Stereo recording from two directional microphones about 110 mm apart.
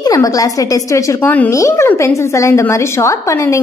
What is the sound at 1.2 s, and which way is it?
Speech, 15° left (ahead or behind).